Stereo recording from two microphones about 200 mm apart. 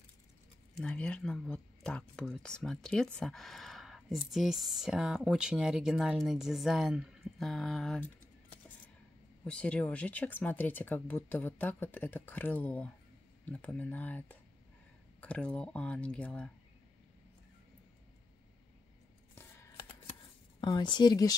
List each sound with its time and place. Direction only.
0.7 s speech: 5° left (ahead or behind)
19.3 s scissors: 15° left (ahead or behind)
20.6 s speech: 25° left (ahead or behind)